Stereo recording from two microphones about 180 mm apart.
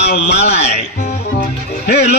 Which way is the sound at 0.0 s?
65° left (ahead or behind).